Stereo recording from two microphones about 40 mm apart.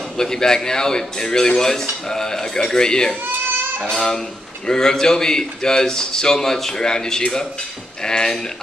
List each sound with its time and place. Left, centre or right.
0.2 s a man's voice: centre